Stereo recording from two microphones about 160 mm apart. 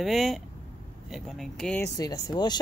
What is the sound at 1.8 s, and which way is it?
Speech, 25° left (ahead or behind).